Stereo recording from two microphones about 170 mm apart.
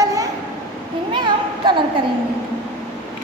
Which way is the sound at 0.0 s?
20° right (ahead or behind).